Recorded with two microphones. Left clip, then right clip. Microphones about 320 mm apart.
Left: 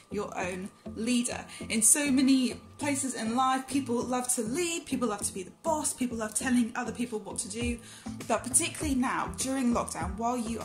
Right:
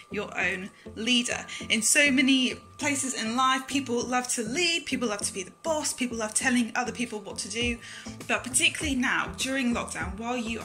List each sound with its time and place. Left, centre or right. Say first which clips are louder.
0.1 s speech: right 5 dB; centre
8.3 s speech: right 5 dB; centre